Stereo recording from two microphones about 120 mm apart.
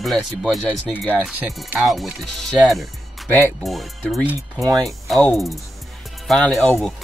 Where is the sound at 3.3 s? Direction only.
15° left (ahead or behind).